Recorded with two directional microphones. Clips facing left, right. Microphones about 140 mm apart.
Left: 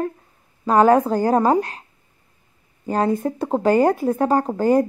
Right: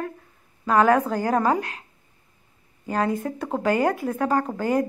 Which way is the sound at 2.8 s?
30° left (ahead or behind).